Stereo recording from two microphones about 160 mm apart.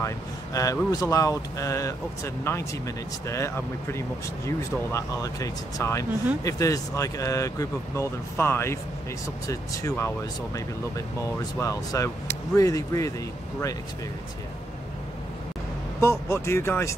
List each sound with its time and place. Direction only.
0.0 s speech: 20° left (ahead or behind)
16.0 s speech: 15° left (ahead or behind)